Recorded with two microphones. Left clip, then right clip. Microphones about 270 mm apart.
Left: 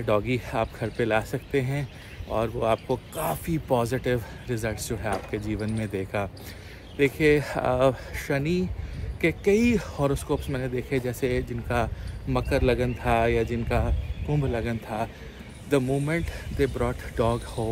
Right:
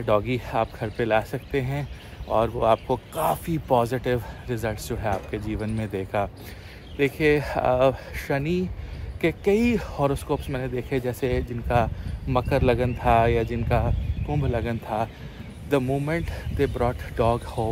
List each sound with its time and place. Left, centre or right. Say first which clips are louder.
0.0 s speech: right 2 dB; centre